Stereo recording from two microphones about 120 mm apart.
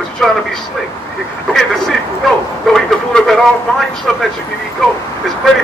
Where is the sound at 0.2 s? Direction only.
5° left (ahead or behind).